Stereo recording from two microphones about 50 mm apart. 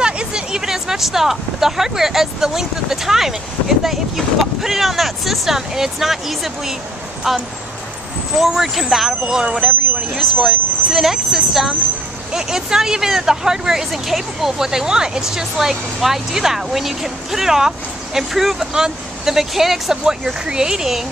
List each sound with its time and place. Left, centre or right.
0.0 s speech: centre
9.2 s speech: centre
10.1 s speech: centre